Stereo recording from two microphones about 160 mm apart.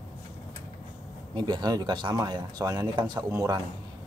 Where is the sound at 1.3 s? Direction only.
25° right (ahead or behind).